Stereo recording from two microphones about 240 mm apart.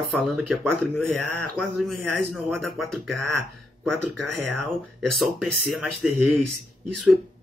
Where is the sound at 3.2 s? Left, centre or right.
Right.